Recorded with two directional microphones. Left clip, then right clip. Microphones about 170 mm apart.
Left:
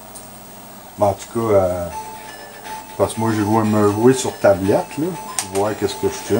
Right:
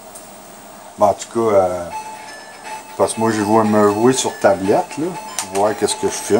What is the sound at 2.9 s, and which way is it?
Speech, 50° right (ahead or behind).